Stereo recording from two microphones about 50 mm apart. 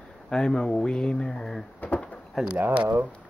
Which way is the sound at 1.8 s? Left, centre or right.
Left.